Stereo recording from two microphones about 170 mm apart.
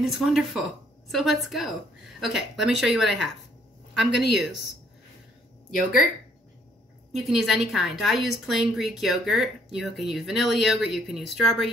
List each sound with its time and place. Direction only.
0.0 s a woman's voice: centre (ahead or behind)
4.1 s speech: 85° left
5.8 s a woman's voice: centre (ahead or behind)
7.2 s a woman's voice: centre (ahead or behind)